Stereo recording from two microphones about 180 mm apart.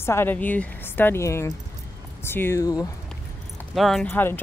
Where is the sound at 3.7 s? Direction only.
Centre (ahead or behind).